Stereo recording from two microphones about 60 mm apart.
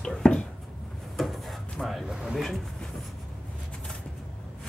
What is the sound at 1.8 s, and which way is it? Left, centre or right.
Speech, centre.